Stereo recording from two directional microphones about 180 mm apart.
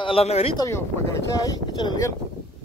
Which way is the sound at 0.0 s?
35° left (ahead or behind).